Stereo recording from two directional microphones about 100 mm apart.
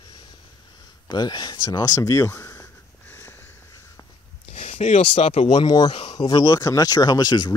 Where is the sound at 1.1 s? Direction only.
45° left (ahead or behind); by 2.6 s 25° left (ahead or behind).